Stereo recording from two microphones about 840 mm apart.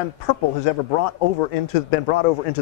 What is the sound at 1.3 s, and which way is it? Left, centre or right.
Speech, left.